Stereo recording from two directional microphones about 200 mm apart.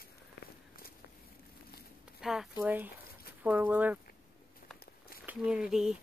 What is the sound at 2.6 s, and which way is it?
Speech, 10° right (ahead or behind).